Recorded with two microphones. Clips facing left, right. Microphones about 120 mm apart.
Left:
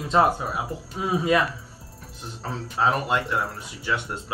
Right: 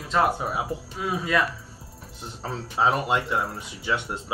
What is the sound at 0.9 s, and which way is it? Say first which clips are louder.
Speech: left 4 dB; 25° left (ahead or behind).